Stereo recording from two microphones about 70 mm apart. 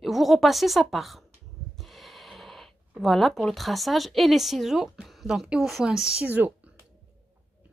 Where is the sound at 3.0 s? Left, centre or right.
Centre.